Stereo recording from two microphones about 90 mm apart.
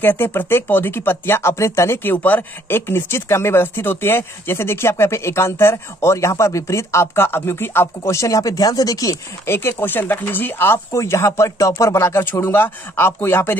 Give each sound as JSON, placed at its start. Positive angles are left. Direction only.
{"t": 0.0, "sound": "speech", "side_deg": 25}
{"t": 9.5, "sound": "speech", "side_deg": 25}